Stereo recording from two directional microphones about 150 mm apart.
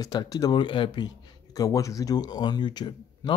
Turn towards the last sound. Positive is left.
turn(degrees=30)  # may be behind; listen again after turning